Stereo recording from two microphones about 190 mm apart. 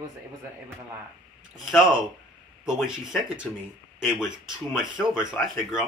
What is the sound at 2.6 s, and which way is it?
Speech, centre (ahead or behind).